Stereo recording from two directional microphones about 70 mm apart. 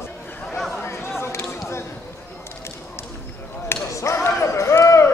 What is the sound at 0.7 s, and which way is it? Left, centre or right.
Chatter, left.